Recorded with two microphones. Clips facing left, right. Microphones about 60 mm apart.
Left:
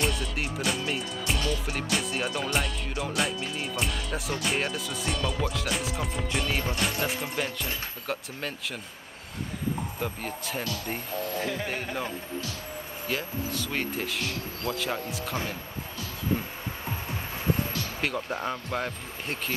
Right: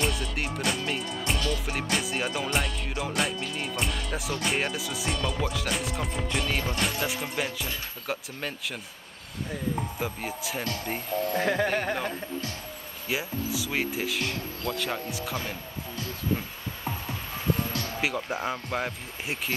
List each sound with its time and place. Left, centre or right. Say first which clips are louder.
0.0 s music: even; centre
9.9 s music: right 1 dB; centre
11.3 s speech: right 8 dB; right
13.1 s music: right 2 dB; centre
18.0 s music: even; centre